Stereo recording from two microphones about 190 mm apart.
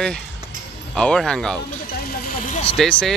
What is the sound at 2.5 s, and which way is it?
Vehicle, 30° left (ahead or behind).